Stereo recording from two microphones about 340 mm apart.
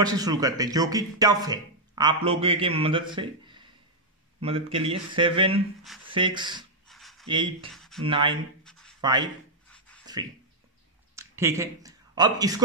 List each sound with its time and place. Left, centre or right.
0.0 s speech: centre
6.9 s writing: centre
7.2 s speech: centre
7.7 s a sound: centre
8.0 s speech: centre
8.6 s a sound: centre
9.0 s speech: centre
10.1 s a sound: centre
11.1 s speech: centre